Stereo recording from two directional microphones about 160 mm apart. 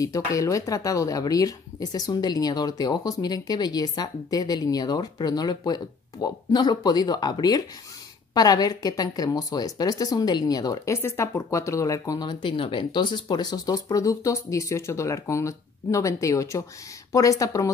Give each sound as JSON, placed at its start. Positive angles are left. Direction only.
{"t": 0.0, "sound": "speech", "side_deg": 20}